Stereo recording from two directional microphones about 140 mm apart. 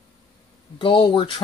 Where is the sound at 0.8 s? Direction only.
35° left (ahead or behind).